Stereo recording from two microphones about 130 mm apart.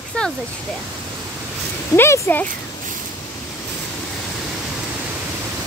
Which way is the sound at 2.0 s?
15° left (ahead or behind).